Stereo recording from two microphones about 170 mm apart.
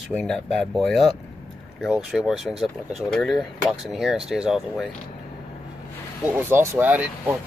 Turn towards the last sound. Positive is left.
turn(degrees=-10)  # may be behind; listen again after turning